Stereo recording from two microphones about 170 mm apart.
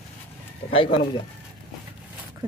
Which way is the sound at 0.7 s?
30° left (ahead or behind).